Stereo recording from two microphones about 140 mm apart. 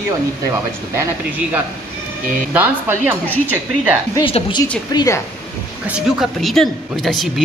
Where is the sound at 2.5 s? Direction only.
15° right (ahead or behind).